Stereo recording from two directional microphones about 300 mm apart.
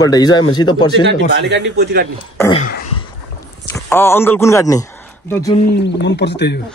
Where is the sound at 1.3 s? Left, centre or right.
Right.